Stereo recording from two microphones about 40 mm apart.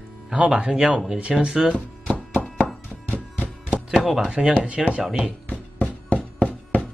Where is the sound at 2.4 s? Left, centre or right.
Left.